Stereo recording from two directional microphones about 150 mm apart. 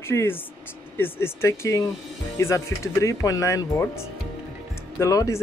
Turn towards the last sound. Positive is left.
turn(degrees=20)  # may be behind; listen again after turning